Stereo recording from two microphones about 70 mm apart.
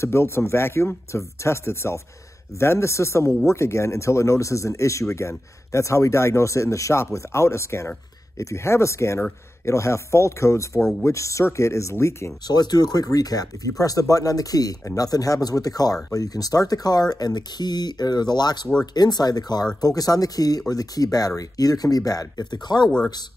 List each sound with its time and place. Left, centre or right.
0.0 s speech: left
12.4 s speech: left
18.9 s speech: left